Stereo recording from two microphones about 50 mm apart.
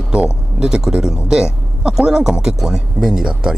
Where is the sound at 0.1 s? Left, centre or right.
Centre.